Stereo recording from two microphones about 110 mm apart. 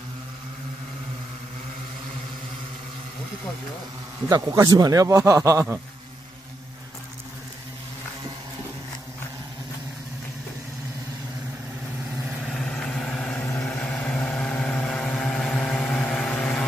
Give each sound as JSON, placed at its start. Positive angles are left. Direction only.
{"t": 4.3, "sound": "a man's voice", "side_deg": -35}
{"t": 12.5, "sound": "vehicle", "side_deg": 5}